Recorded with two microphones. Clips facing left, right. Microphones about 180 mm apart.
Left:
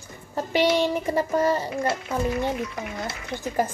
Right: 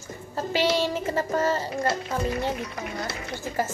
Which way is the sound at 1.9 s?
40° right (ahead or behind).